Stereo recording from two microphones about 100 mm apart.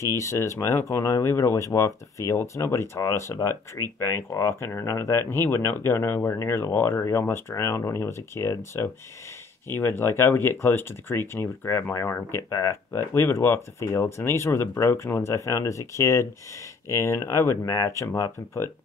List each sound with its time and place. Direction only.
0.0 s speech: 30° left (ahead or behind)